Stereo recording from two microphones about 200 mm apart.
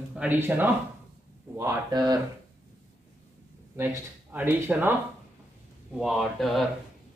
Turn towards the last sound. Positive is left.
turn(degrees=0)  # may be behind; listen again after turning